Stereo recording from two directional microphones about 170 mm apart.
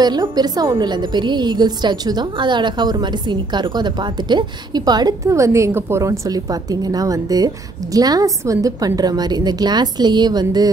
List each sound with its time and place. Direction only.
0.0 s a woman's voice: 25° right (ahead or behind)